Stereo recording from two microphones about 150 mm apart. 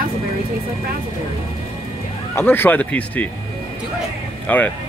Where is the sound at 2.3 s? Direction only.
15° left (ahead or behind).